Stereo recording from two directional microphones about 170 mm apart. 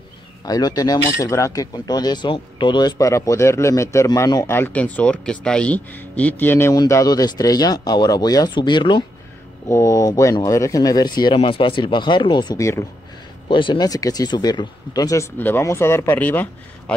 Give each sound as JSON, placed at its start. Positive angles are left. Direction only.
{"t": 0.5, "sound": "speech", "side_deg": 25}
{"t": 13.5, "sound": "speech", "side_deg": 30}